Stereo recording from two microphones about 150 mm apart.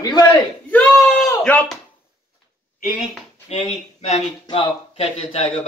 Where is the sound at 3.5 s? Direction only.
45° left (ahead or behind).